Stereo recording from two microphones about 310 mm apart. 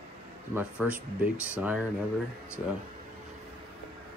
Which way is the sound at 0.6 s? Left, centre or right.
Centre.